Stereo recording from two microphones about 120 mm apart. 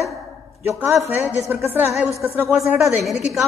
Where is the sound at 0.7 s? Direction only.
20° right (ahead or behind).